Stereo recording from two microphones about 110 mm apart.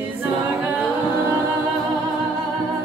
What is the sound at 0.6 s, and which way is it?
A capella, 15° right (ahead or behind).